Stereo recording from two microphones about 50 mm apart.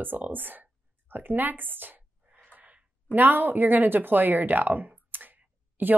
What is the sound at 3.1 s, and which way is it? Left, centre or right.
A woman's voice, right.